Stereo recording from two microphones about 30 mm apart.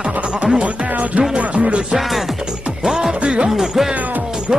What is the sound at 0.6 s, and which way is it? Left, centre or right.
Speech, right.